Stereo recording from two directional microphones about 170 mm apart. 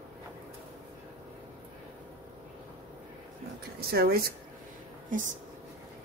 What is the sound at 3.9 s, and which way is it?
Speech, 65° right (ahead or behind).